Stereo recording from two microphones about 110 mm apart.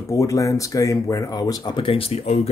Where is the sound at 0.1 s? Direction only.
30° left (ahead or behind).